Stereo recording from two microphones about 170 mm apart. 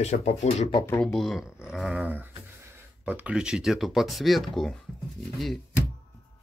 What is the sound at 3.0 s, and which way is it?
Speech, 10° right (ahead or behind).